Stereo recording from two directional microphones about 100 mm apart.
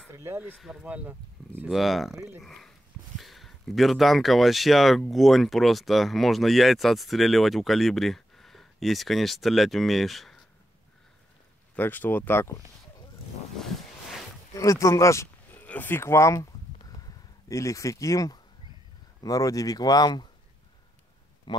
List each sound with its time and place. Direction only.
0.1 s speech: 25° right (ahead or behind)
1.7 s speech: centre (ahead or behind)
11.7 s speech: 20° left (ahead or behind)
14.5 s speech: 35° left (ahead or behind)
15.6 s speech: 15° left (ahead or behind)
16.9 s a sound: 35° left (ahead or behind)
19.2 s speech: 35° left (ahead or behind)
21.5 s speech: 50° left (ahead or behind)